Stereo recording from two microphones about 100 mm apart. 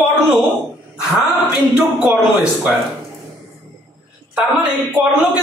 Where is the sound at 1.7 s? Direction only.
15° right (ahead or behind).